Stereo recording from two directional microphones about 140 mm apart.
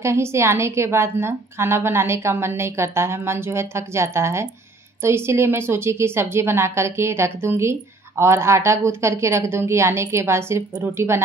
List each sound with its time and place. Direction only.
0.0 s a woman's voice: 20° right (ahead or behind)